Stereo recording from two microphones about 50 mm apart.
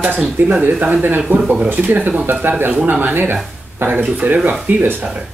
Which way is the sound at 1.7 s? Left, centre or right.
Right.